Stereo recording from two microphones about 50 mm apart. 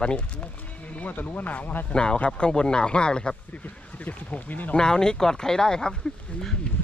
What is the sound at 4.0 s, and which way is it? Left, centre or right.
Speech, left.